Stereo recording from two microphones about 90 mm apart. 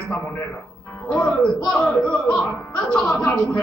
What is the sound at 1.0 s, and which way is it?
Speech, 15° left (ahead or behind).